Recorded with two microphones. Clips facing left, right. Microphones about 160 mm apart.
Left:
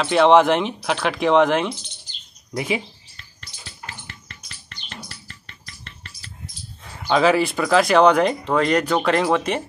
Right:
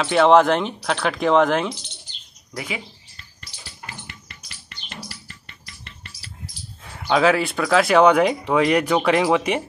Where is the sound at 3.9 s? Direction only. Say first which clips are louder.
Right 1 dB; 10° right (ahead or behind).